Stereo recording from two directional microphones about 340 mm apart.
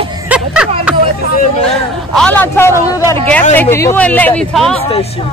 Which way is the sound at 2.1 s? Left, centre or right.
Centre.